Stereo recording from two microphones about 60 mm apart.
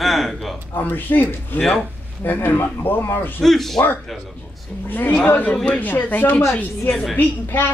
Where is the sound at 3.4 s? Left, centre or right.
Centre.